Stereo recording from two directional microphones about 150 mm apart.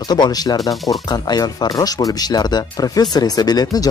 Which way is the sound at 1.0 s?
25° left (ahead or behind).